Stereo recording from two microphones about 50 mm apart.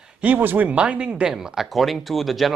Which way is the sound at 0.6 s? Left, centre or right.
Right.